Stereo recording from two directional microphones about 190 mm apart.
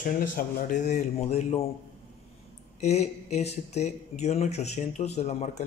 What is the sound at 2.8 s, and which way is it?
Speech, 35° left (ahead or behind).